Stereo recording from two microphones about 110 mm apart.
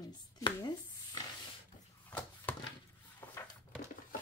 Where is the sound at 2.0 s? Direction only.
15° left (ahead or behind).